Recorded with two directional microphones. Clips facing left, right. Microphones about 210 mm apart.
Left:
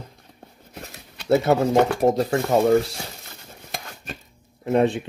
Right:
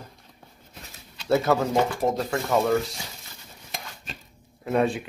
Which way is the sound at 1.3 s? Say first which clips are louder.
Left 4 dB; 30° left (ahead or behind).